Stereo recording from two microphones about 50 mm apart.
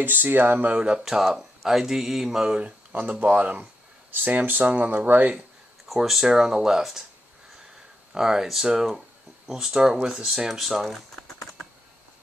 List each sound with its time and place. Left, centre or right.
0.0 s speech: right
0.7 s speech: centre
2.6 s speech: right
5.9 s speech: centre
8.1 s speech: centre